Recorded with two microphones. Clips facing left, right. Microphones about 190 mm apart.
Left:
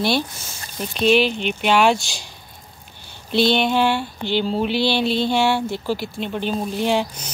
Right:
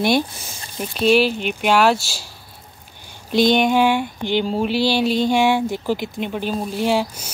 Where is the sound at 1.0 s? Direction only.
5° right (ahead or behind).